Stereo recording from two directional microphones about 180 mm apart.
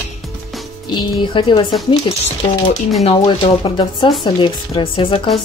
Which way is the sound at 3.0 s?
30° left (ahead or behind).